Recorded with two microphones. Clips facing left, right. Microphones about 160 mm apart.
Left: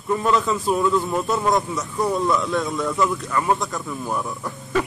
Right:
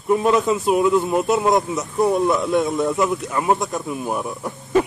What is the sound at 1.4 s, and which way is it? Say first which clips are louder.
Speech: right 3 dB; 20° right (ahead or behind).